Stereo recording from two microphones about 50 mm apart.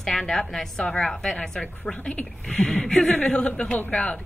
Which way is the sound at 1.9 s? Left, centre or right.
Left.